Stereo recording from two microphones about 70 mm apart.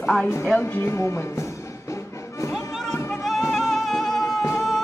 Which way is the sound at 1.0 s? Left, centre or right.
Left.